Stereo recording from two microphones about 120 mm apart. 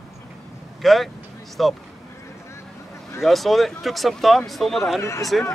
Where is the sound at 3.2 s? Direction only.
Centre (ahead or behind).